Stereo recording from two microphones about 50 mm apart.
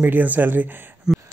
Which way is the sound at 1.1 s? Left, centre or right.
Centre.